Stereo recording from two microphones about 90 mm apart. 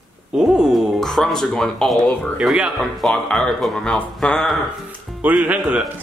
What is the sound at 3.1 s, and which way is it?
Speech, 5° left (ahead or behind).